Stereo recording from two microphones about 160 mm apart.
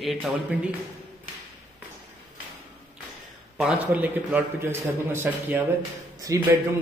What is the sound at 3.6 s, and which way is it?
A man's voice, 5° right (ahead or behind).